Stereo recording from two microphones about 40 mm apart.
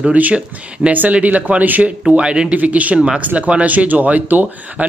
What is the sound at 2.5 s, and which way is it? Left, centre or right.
Speech, right.